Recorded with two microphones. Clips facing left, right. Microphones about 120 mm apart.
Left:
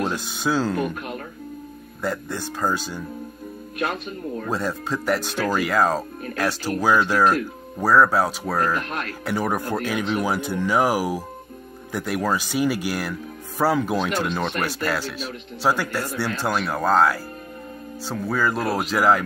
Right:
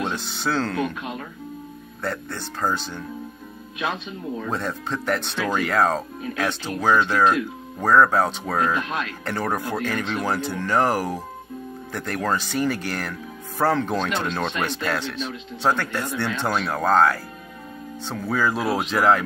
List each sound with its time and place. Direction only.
0.0 s speech: 10° left (ahead or behind)
2.0 s speech: 10° left (ahead or behind)
3.7 s speech: 55° left (ahead or behind)
4.5 s speech: 5° left (ahead or behind)